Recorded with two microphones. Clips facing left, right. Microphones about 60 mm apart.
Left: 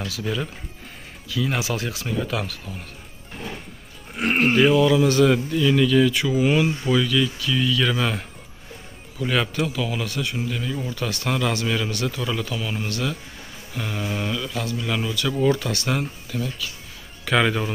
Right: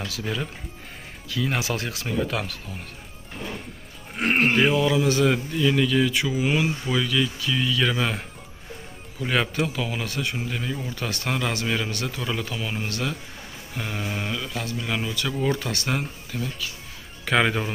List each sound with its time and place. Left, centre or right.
0.0 s speech: right
4.2 s speech: right
4.5 s speech: centre
9.2 s speech: right
16.0 s a man's voice: centre